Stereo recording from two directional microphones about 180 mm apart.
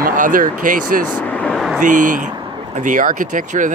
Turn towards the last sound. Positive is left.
turn(degrees=-45)  # may be behind; listen again after turning